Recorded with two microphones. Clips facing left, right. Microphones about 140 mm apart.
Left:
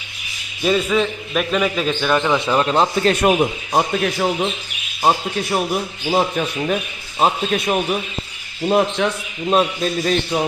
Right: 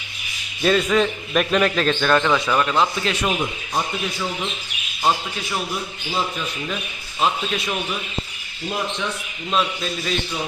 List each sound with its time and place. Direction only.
0.6 s a man's voice: 10° left (ahead or behind); by 4.5 s 60° left (ahead or behind)
5.0 s speech: 40° left (ahead or behind)
6.0 s a man's voice: 60° left (ahead or behind)
8.6 s a man's voice: 65° left (ahead or behind)
9.5 s a man's voice: 45° left (ahead or behind)